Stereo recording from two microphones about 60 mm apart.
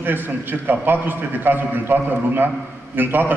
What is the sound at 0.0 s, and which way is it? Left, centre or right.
A man's voice, right.